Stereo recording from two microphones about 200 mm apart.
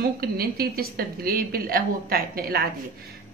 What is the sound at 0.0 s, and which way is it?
A woman's voice, 50° right (ahead or behind).